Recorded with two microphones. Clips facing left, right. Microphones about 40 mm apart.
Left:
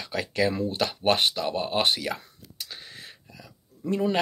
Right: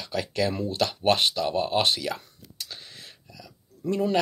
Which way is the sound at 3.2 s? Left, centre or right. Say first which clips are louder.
Right 1 dB; left.